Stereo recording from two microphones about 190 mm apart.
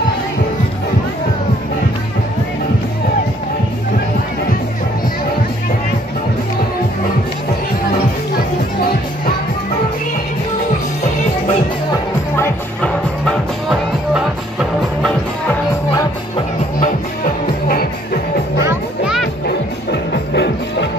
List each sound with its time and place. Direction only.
12.4 s music: 5° left (ahead or behind)
19.9 s music: 65° left (ahead or behind)